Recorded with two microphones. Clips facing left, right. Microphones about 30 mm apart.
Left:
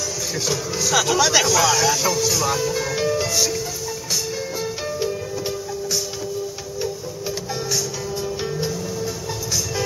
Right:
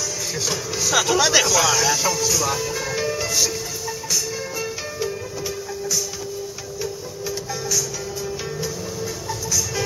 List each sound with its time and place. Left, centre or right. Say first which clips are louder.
0.5 s speech: left 2 dB; centre
6.8 s music: left 2 dB; left